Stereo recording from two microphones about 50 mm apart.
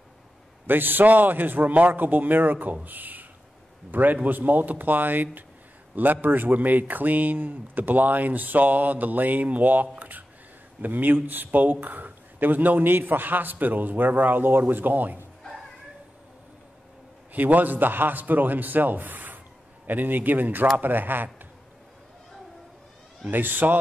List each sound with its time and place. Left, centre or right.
0.7 s speech: right
9.9 s a sound: right
10.8 s speech: right
17.3 s speech: right
23.2 s speech: right